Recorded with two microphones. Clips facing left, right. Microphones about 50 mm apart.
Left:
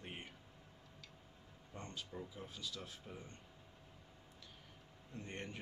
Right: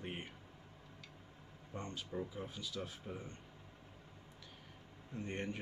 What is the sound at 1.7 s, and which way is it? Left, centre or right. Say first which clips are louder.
Speech: right 5 dB; centre.